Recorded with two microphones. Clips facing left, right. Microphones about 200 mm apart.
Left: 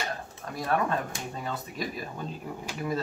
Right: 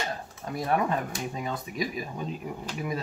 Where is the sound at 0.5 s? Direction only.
20° right (ahead or behind).